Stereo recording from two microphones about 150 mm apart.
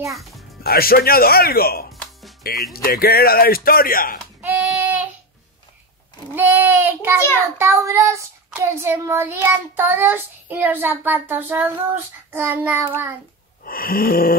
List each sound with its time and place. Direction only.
0.2 s music: centre (ahead or behind)
0.7 s speech: 85° left
4.4 s child singing: 10° right (ahead or behind)
6.3 s child singing: 15° right (ahead or behind)
13.7 s a sound: 75° left (ahead or behind)